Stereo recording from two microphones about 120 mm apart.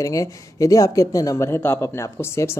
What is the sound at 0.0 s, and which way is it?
Speech, 25° left (ahead or behind).